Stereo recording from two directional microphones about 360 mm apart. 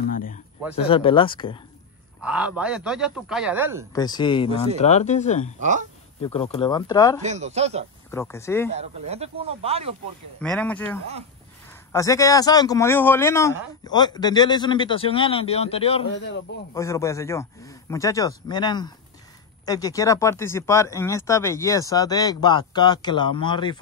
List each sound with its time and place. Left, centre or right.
0.1 s a sound: left
0.7 s speech: centre
2.2 s speech: centre
3.9 s speech: centre
5.6 s speech: right
6.2 s speech: centre
7.2 s speech: centre
8.1 s speech: centre
8.7 s speech: centre
10.4 s speech: centre